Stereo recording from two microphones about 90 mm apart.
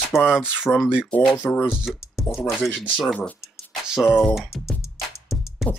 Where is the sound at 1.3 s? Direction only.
25° left (ahead or behind).